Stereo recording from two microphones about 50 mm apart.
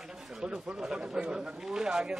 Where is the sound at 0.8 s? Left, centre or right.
Centre.